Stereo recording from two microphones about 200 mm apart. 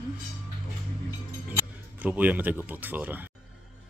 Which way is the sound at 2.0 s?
10° right (ahead or behind).